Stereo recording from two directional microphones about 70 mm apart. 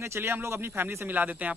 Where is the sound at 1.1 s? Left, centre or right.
Right.